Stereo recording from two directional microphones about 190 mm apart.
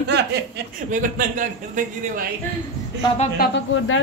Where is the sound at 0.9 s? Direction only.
45° right (ahead or behind).